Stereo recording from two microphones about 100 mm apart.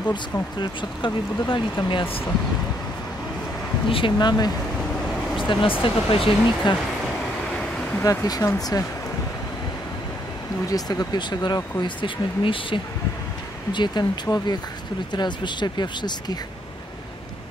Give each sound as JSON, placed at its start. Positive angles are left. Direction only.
{"t": 0.1, "sound": "speech", "side_deg": 50}
{"t": 3.9, "sound": "speech", "side_deg": 55}
{"t": 8.0, "sound": "speech", "side_deg": 35}
{"t": 10.7, "sound": "speech", "side_deg": 40}
{"t": 13.7, "sound": "speech", "side_deg": 50}